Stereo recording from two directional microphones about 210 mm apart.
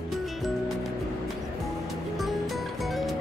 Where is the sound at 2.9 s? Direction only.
Centre (ahead or behind).